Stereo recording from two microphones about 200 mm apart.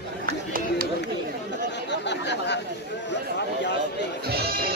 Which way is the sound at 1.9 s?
60° left (ahead or behind).